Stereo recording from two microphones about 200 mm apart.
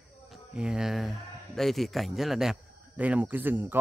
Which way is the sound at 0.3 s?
5° right (ahead or behind).